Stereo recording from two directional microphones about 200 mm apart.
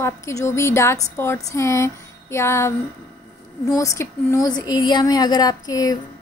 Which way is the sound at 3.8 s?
15° left (ahead or behind).